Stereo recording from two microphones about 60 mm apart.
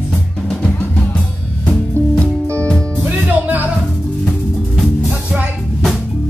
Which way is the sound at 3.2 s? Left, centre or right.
Right.